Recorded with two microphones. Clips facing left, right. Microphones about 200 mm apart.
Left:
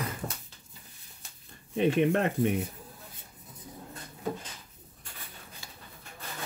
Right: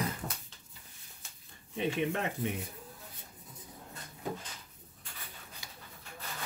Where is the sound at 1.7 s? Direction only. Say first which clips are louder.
Left 8 dB; 60° left (ahead or behind).